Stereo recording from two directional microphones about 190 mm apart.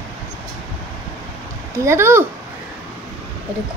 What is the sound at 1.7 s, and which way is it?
Speech, 15° right (ahead or behind).